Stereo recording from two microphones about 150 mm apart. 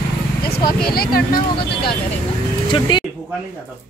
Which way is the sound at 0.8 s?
80° left.